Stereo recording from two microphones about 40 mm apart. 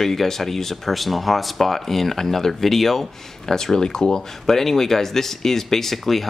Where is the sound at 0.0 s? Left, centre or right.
Centre.